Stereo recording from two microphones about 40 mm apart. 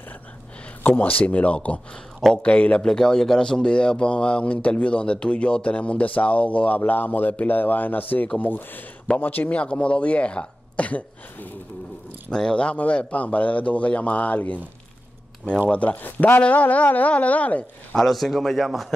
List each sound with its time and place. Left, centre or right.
0.8 s a man's voice: left
2.8 s speech: centre; by 9.5 s left
9.5 s speech: left
12.3 s a man's voice: centre; by 14.6 s left
15.7 s a man's voice: left
16.0 s speech: left
16.4 s a man's voice: left
17.9 s a man's voice: centre